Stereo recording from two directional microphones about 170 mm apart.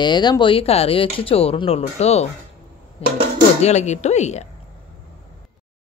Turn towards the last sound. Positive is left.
turn(degrees=40)  # may be behind; listen again after turning